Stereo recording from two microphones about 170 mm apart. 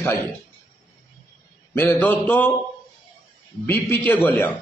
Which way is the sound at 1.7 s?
10° left (ahead or behind).